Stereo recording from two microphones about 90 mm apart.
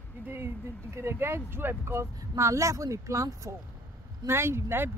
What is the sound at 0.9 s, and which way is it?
Speech, 30° right (ahead or behind).